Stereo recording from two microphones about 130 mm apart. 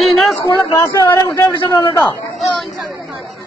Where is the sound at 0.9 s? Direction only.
30° left (ahead or behind).